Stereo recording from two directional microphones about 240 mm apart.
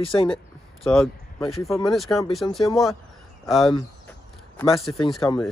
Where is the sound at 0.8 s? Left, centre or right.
Centre.